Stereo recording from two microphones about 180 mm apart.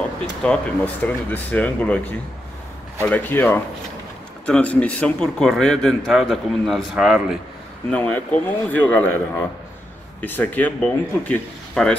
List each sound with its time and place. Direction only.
0.4 s a man's voice: 5° left (ahead or behind)
7.9 s speech: 10° left (ahead or behind)
10.2 s speech: 10° left (ahead or behind)